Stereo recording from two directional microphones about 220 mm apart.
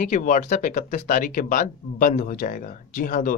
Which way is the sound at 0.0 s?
35° left (ahead or behind).